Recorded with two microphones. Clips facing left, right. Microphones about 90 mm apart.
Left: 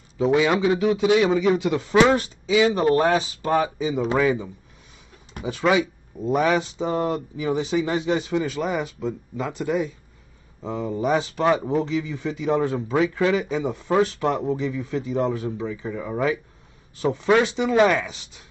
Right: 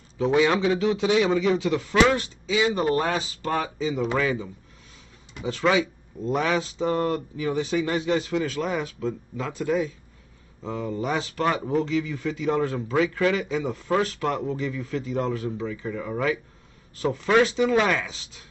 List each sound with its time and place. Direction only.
0.4 s a man's voice: 10° left (ahead or behind)
1.8 s speech: 25° left (ahead or behind); by 18.1 s 5° left (ahead or behind)